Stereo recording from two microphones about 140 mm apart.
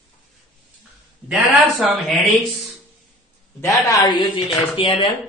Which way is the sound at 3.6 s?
25° left (ahead or behind).